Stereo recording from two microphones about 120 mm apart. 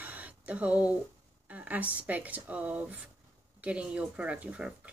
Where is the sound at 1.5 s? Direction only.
10° right (ahead or behind).